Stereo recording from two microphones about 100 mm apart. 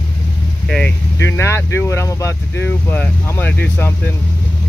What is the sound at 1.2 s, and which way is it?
Speech, 25° left (ahead or behind).